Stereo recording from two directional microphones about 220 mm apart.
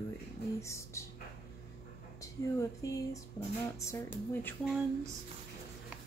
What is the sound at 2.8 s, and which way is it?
Speech, 15° left (ahead or behind).